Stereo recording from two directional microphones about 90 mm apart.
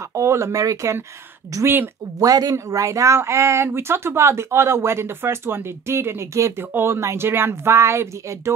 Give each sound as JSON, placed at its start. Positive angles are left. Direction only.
{"t": 0.1, "sound": "speech", "side_deg": -35}